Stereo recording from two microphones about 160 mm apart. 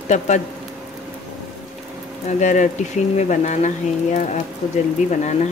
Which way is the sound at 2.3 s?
50° left (ahead or behind).